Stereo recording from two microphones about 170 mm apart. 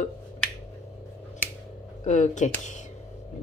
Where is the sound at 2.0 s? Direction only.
45° left (ahead or behind).